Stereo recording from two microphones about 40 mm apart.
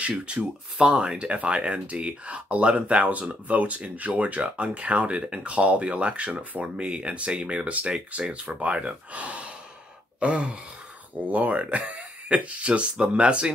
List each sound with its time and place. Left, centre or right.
0.2 s speech: right